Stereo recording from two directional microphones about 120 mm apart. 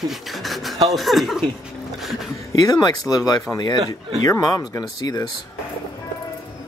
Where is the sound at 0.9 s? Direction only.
Centre (ahead or behind).